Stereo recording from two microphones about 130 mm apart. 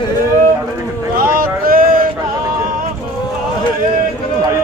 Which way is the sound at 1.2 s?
90° right.